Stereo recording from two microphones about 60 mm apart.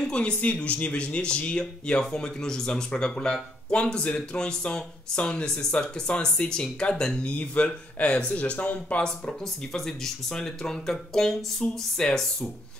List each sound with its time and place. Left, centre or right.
0.0 s a man's voice: centre